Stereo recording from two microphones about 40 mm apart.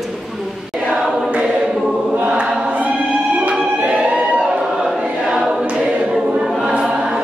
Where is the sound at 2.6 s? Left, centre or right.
Right.